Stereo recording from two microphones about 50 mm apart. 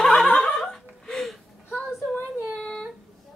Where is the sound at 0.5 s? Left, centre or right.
Centre.